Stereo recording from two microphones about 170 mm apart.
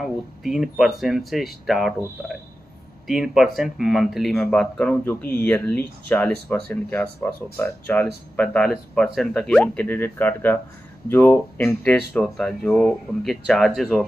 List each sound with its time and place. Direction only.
0.0 s speech: centre (ahead or behind)